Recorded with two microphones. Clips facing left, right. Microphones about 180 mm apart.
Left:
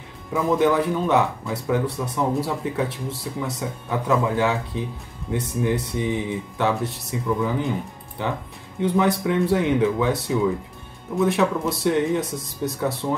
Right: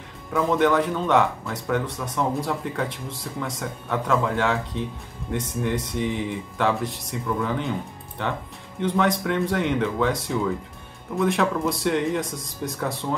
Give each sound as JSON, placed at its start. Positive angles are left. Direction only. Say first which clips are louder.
{"t": 0.3, "sound": "speech", "louder": "left 1 dB", "side_deg": 5}